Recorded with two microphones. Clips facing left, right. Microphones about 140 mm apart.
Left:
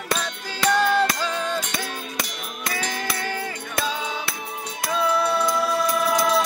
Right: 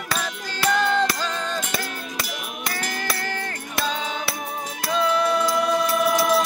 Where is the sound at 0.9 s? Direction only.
10° left (ahead or behind).